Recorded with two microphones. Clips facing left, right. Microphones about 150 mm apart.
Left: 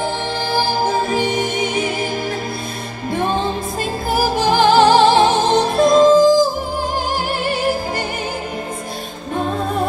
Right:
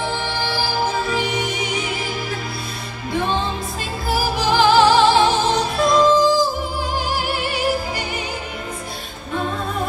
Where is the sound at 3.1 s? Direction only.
45° left (ahead or behind).